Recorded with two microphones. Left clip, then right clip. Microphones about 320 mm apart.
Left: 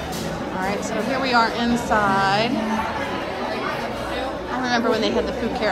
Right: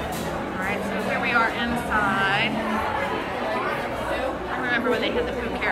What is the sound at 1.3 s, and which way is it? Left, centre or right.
A woman's voice, centre.